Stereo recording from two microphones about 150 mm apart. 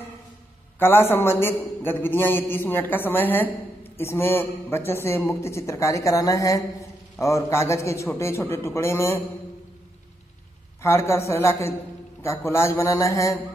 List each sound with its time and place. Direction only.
0.7 s a man's voice: 15° left (ahead or behind)
10.8 s a man's voice: 20° left (ahead or behind)